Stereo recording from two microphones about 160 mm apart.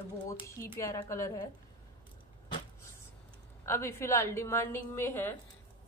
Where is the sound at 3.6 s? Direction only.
15° left (ahead or behind).